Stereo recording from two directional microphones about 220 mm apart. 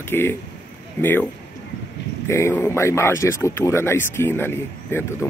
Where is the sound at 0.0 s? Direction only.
10° left (ahead or behind).